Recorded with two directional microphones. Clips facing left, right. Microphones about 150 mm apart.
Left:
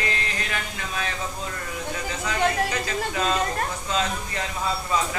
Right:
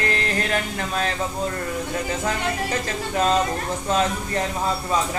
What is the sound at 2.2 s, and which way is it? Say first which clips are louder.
Mantra: left 1 dB; 45° right (ahead or behind).